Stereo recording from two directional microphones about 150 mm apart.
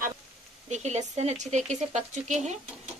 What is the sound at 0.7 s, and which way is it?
Speech, 50° right (ahead or behind).